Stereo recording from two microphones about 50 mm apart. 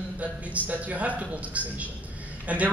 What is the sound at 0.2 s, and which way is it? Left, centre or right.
A man's voice, right.